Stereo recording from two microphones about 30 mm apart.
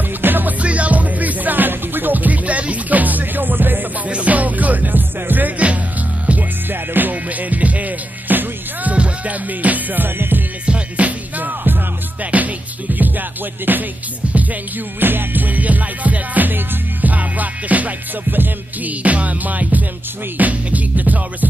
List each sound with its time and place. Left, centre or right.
0.3 s music: right
0.6 s music: right
4.1 s music: right
7.0 s music: right
8.3 s music: right
8.9 s music: right
9.3 s music: right
10.6 s music: right
11.1 s music: right
12.2 s music: right
13.7 s music: right
14.3 s music: right